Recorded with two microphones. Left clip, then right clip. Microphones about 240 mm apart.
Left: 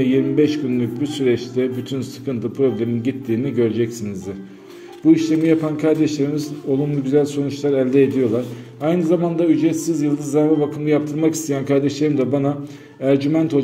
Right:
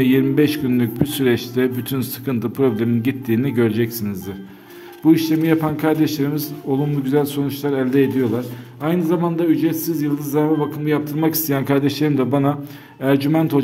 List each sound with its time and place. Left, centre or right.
0.0 s a man's voice: right